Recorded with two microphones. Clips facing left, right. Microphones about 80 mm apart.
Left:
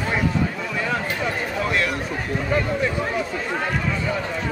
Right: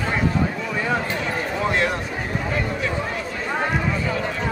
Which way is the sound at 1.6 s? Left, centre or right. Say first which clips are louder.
Right 2 dB; right.